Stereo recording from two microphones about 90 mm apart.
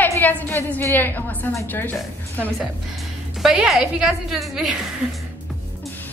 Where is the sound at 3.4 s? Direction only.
5° right (ahead or behind).